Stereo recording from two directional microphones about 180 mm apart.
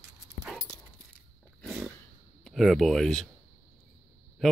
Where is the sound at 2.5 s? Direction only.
Centre (ahead or behind).